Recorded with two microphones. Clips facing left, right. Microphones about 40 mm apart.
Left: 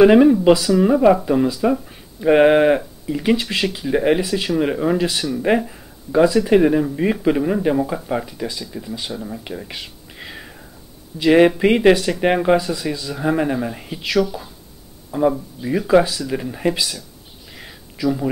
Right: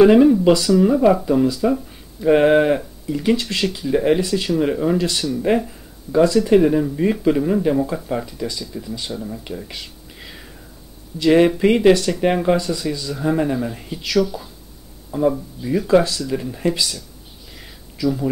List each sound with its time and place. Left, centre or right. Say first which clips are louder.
0.0 s speech: even; centre
0.6 s speech: right 1 dB; centre
0.8 s speech: left 4 dB; centre
9.2 s a sound: even; centre
11.1 s speech: left 1 dB; centre
12.6 s speech: even; centre
17.6 s a sound: even; centre